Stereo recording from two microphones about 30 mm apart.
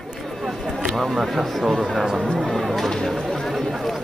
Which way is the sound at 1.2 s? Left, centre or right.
Centre.